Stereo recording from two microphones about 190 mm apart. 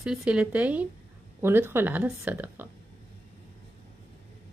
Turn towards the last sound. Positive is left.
turn(degrees=-10)  # may be behind; listen again after turning